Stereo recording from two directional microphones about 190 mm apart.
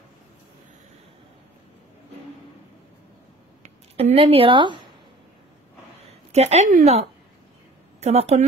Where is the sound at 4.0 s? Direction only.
30° right (ahead or behind).